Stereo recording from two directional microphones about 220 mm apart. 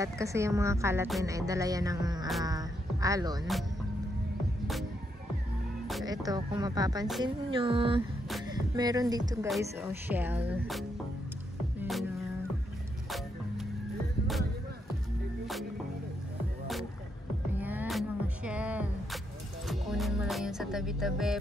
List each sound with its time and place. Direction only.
0.0 s speech: 15° right (ahead or behind)
2.4 s a sound: 15° right (ahead or behind)
6.0 s speech: 20° right (ahead or behind)
7.5 s a sound: 25° right (ahead or behind)
8.5 s speech: 15° right (ahead or behind)
11.8 s music: centre (ahead or behind)
17.6 s music: 5° right (ahead or behind)